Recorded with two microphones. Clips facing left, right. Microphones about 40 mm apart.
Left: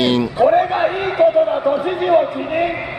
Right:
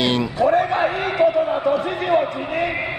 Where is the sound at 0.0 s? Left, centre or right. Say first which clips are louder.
Left 4 dB; centre.